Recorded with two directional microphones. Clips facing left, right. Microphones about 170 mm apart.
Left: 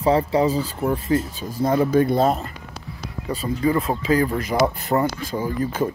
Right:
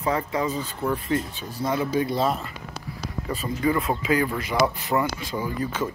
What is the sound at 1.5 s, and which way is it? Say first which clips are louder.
Speech: left 6 dB; 40° left (ahead or behind).